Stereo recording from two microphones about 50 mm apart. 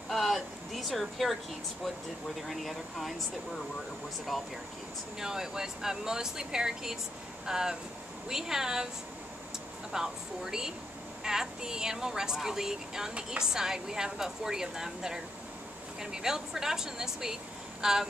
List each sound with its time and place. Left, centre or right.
0.1 s speech: centre
2.4 s speech: centre
4.3 s speech: centre
5.2 s a woman's voice: centre
9.9 s a woman's voice: centre